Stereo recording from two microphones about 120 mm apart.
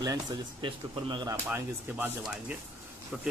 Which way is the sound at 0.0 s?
30° right (ahead or behind).